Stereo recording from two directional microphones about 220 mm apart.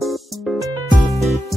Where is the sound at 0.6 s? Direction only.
15° right (ahead or behind).